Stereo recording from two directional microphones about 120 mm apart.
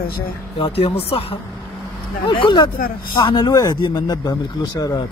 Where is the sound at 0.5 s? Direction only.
50° left (ahead or behind).